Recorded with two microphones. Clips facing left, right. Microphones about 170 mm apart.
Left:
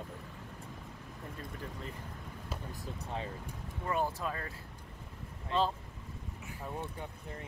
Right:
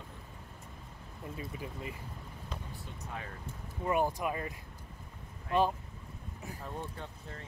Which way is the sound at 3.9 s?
15° right (ahead or behind).